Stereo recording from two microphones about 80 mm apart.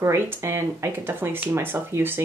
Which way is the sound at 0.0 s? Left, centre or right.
Right.